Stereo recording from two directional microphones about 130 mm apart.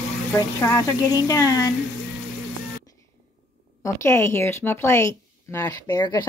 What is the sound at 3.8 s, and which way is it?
Speech, 20° left (ahead or behind).